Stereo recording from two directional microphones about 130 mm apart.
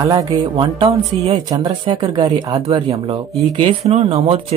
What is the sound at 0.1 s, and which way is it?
Speech, 30° right (ahead or behind).